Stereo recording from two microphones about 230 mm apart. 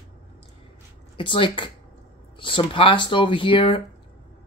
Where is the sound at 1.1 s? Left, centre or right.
Left.